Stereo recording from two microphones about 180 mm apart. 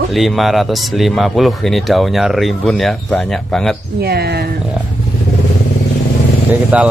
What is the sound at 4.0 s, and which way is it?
Speech, 60° right (ahead or behind).